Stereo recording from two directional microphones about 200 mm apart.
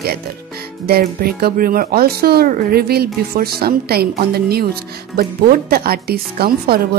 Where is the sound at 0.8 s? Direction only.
50° right (ahead or behind).